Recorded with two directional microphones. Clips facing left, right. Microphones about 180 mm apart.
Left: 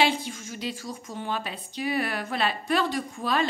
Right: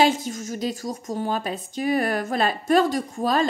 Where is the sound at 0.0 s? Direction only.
45° right (ahead or behind).